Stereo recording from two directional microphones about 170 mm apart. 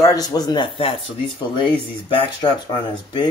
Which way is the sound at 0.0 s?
20° left (ahead or behind).